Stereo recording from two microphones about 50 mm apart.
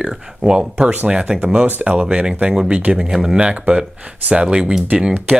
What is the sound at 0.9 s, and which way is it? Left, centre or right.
Speech, right.